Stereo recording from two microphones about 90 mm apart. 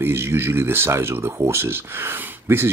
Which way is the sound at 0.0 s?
30° right (ahead or behind).